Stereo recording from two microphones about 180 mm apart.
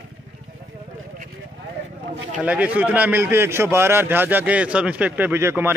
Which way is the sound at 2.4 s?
5° right (ahead or behind).